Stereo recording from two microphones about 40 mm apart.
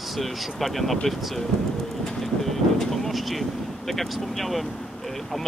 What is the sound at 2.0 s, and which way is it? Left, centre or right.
Vehicle, centre.